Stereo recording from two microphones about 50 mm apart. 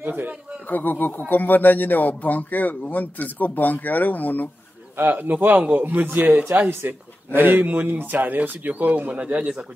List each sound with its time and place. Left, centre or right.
0.0 s a man's voice: right
0.7 s speech: left
4.9 s a man's voice: right
9.2 s speech: right